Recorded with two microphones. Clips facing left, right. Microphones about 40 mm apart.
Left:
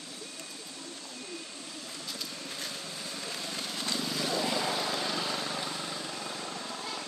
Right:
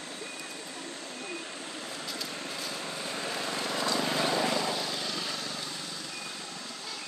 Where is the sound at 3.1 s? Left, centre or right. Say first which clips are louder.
Right 5 dB; right.